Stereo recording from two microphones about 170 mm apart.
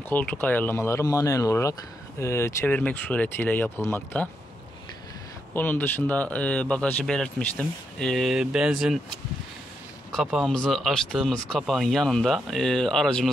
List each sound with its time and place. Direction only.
0.1 s speech: 10° left (ahead or behind)
5.5 s speech: 10° left (ahead or behind)
10.1 s speech: centre (ahead or behind)